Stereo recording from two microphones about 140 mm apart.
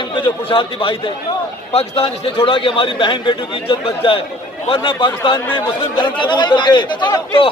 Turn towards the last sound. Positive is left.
turn(degrees=35)  # may be behind; listen again after turning